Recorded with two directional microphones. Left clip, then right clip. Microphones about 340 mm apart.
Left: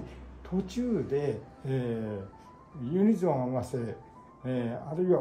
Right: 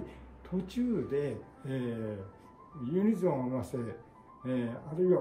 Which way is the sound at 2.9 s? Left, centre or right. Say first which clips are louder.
Left 3 dB; centre.